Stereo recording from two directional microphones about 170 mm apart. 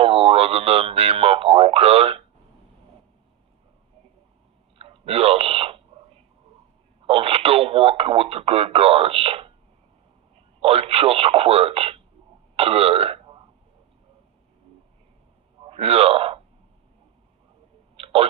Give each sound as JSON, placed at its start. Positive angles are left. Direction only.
{"t": 0.0, "sound": "speech", "side_deg": -35}
{"t": 4.7, "sound": "a sound", "side_deg": -35}
{"t": 7.1, "sound": "speech", "side_deg": -35}
{"t": 10.6, "sound": "speech", "side_deg": -35}
{"t": 15.6, "sound": "speech", "side_deg": -35}
{"t": 17.9, "sound": "a sound", "side_deg": -35}